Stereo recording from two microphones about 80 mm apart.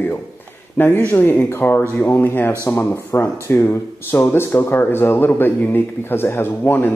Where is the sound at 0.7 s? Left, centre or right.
Left.